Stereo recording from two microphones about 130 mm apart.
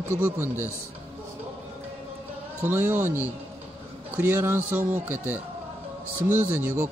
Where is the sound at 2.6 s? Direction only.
15° right (ahead or behind).